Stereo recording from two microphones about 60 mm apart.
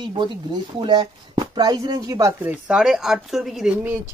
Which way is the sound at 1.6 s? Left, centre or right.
Right.